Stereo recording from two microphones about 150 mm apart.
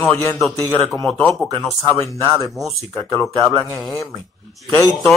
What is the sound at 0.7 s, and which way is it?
Speech, 5° left (ahead or behind).